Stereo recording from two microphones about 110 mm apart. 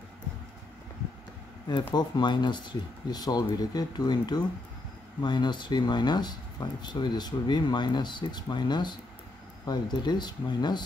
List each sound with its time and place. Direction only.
2.0 s speech: 40° left (ahead or behind)